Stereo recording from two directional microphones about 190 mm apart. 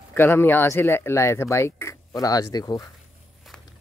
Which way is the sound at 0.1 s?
10° left (ahead or behind).